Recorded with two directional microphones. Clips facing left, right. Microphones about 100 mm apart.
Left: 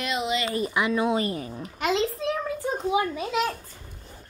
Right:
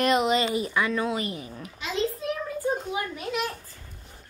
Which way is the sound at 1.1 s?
35° left (ahead or behind).